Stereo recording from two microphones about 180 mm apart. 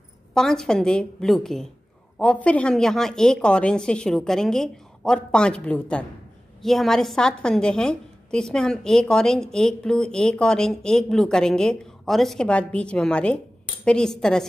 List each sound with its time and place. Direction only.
0.3 s a woman's voice: 5° left (ahead or behind)